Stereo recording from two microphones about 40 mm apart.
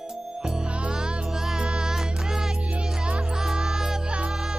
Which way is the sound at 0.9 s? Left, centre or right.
Centre.